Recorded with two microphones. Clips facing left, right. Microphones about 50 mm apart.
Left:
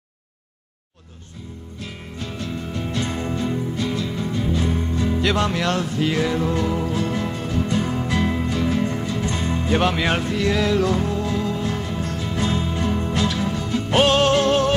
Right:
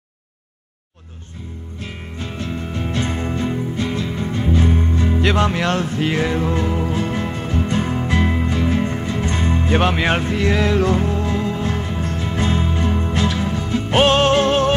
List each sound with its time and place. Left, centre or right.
1.8 s music: right